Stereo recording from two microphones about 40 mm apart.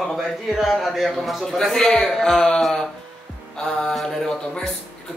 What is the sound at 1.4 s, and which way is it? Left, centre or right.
A man's voice, centre.